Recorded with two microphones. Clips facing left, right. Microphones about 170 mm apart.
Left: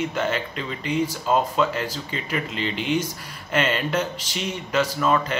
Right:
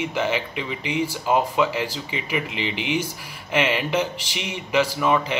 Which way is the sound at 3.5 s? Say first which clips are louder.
Right 1 dB; 10° right (ahead or behind).